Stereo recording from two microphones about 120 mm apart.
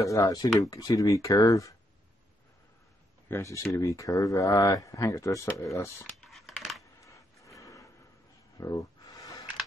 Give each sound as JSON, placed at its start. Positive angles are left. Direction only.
{"t": 0.0, "sound": "speech", "side_deg": 30}
{"t": 3.3, "sound": "speech", "side_deg": 20}
{"t": 6.2, "sound": "scissors", "side_deg": 0}
{"t": 7.1, "sound": "gasp", "side_deg": 25}
{"t": 8.5, "sound": "a sound", "side_deg": 30}